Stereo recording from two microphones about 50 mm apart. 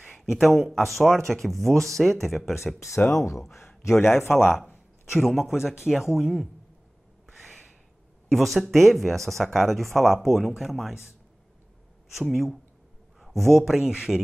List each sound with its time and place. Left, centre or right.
0.0 s speech: centre
3.1 s speech: left
3.5 s a sound: left
4.3 s speech: centre
7.3 s a sound: centre
8.3 s speech: centre
12.2 s speech: centre